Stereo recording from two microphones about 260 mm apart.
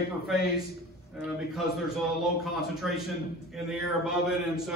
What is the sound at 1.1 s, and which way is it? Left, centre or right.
A man's voice, centre.